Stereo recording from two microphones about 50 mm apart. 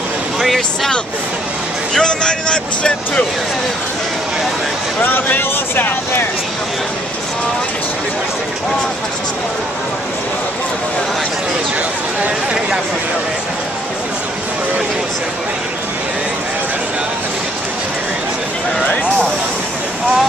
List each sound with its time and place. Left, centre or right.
2.0 s speech: centre
5.0 s speech: left